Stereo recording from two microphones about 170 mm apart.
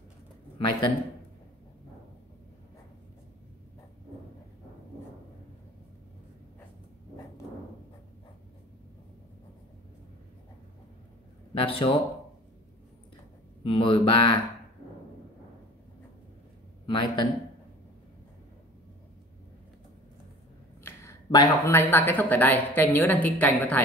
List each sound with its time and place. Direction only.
0.6 s speech: 30° left (ahead or behind)
11.5 s speech: 30° left (ahead or behind)
13.7 s speech: 30° left (ahead or behind)
16.8 s a man's voice: 25° left (ahead or behind)
20.8 s speech: 20° left (ahead or behind)